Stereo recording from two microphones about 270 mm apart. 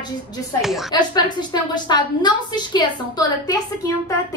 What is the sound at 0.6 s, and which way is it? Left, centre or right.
Speech, centre.